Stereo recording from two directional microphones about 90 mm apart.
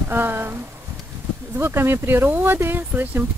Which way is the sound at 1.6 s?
25° right (ahead or behind).